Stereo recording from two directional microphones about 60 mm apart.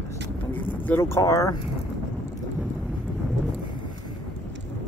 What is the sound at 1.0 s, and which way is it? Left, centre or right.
Speech, left.